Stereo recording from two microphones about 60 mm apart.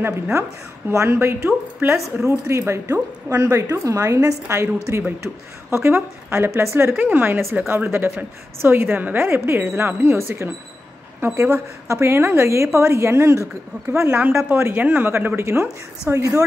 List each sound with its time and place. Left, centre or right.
0.0 s a woman's voice: right
1.1 s a woman's voice: right
2.2 s a woman's voice: right
3.3 s a woman's voice: right
7.0 s a woman's voice: right
14.5 s a woman's voice: right